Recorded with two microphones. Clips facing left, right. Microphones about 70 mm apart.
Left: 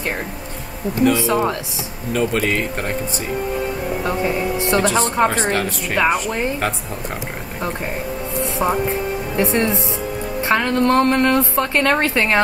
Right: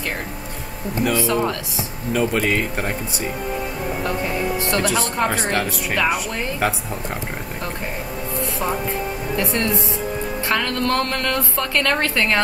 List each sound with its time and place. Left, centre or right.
1.1 s a woman's voice: centre
2.1 s speech: centre
4.0 s a woman's voice: centre
4.8 s speech: centre
8.4 s music: left
9.4 s a woman's voice: left